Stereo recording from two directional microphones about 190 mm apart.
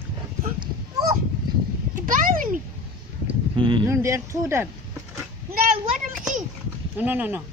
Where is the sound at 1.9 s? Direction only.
45° right (ahead or behind).